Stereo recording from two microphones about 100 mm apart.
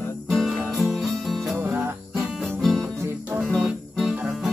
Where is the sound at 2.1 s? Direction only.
5° right (ahead or behind).